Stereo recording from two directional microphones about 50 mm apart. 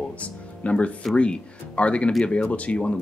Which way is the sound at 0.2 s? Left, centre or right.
Left.